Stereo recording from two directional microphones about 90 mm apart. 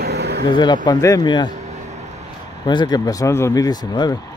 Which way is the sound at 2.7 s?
55° left (ahead or behind).